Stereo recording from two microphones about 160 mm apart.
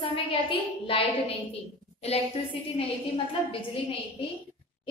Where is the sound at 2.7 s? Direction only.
30° left (ahead or behind).